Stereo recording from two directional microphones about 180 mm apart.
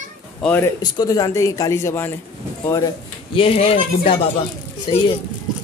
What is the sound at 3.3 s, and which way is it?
Speech, 30° left (ahead or behind).